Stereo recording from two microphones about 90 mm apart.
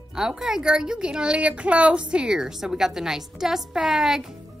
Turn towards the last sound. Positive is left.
turn(degrees=-5)  # may be behind; listen again after turning